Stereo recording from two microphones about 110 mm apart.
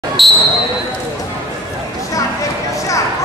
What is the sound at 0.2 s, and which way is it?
Speech, centre (ahead or behind).